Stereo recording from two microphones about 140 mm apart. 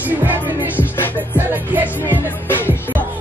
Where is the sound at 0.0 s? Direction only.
15° right (ahead or behind).